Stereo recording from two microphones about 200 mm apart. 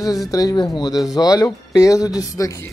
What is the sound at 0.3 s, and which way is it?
Speech, 20° left (ahead or behind).